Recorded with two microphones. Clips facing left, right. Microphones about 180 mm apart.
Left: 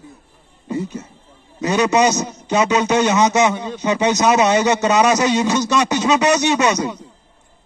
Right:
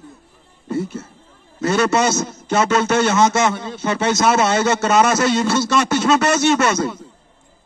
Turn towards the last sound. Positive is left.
turn(degrees=15)  # may be behind; listen again after turning